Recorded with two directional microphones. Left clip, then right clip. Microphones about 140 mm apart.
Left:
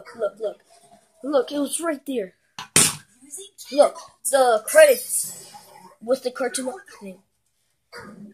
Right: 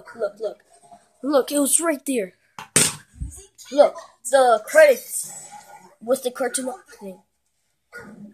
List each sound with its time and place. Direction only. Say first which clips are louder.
0.2 s a woman's voice: even; centre (ahead or behind)
1.2 s a woman's voice: right 2 dB; 25° right (ahead or behind)
3.6 s a woman's voice: right 1 dB; 5° right (ahead or behind)